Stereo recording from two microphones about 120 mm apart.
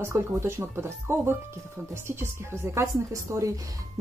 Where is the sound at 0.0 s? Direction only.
20° right (ahead or behind).